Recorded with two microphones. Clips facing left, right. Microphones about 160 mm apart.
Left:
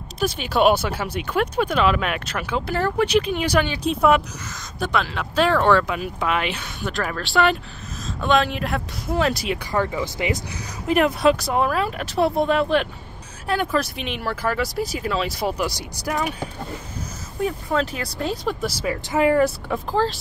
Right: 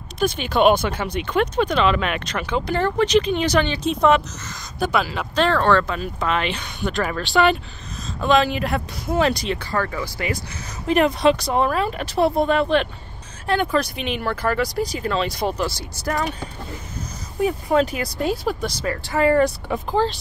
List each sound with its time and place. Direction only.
0.2 s speech: 5° left (ahead or behind)
4.7 s speech: 5° right (ahead or behind)
9.7 s speech: 15° left (ahead or behind)
10.9 s speech: 5° left (ahead or behind)
17.7 s speech: 10° right (ahead or behind)
18.7 s speech: 10° left (ahead or behind)
19.3 s speech: 5° left (ahead or behind)